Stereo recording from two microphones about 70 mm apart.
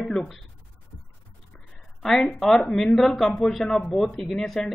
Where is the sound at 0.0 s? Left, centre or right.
Centre.